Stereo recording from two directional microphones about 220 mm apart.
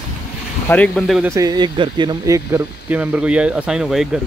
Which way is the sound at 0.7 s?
5° left (ahead or behind).